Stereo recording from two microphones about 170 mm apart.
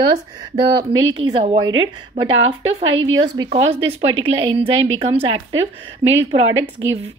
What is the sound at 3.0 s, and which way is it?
A woman's voice, 25° right (ahead or behind).